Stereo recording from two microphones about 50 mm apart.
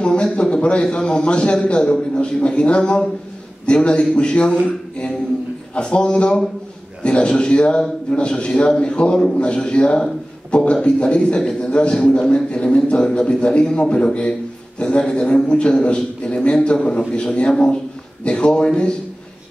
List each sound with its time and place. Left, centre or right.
0.0 s a man's voice: centre